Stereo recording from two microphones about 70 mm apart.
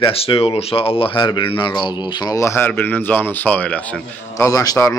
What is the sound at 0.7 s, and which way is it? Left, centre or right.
Speech, left.